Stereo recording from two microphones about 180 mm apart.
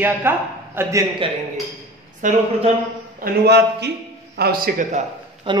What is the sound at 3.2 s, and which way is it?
Speech, 65° right (ahead or behind).